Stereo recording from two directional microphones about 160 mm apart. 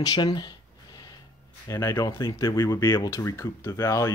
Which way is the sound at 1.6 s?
20° left (ahead or behind).